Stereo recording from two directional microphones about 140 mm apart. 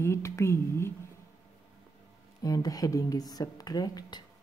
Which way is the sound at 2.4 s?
25° left (ahead or behind).